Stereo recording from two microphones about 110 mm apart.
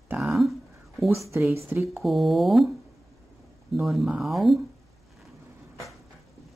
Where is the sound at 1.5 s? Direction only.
25° right (ahead or behind).